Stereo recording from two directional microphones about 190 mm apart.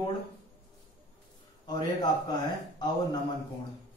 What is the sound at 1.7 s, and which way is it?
Speech, 20° left (ahead or behind).